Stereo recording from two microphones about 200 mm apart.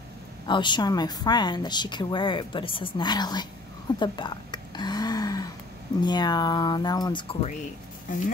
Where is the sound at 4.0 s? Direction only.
20° left (ahead or behind).